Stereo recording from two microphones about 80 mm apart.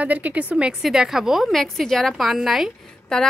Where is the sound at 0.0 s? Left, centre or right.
Centre.